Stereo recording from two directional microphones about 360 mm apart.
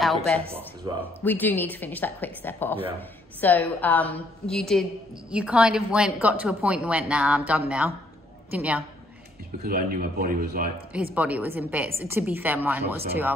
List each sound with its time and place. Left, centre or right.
0.9 s speech: centre
1.2 s a woman's voice: centre
9.6 s speech: right
11.1 s a woman's voice: centre